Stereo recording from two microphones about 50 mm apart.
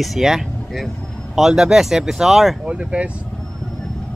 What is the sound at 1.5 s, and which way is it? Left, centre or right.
Speech, centre.